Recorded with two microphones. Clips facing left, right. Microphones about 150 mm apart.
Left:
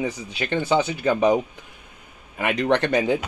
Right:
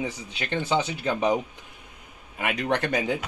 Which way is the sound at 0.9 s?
15° left (ahead or behind).